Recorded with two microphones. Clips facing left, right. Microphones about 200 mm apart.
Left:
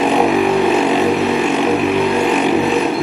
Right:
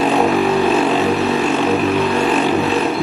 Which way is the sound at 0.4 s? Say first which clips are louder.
Left 1 dB; 15° left (ahead or behind).